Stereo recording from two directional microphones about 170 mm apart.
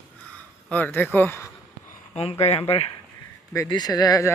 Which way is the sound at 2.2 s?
35° left (ahead or behind).